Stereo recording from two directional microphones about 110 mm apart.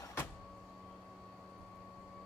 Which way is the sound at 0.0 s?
25° left (ahead or behind).